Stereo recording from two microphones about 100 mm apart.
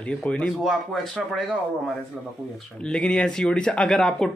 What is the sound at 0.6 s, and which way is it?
Speech, centre (ahead or behind).